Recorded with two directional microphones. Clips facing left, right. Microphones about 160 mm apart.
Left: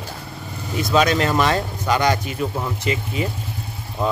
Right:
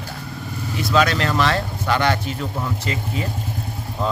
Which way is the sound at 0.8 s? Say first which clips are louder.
Left 1 dB; 20° left (ahead or behind).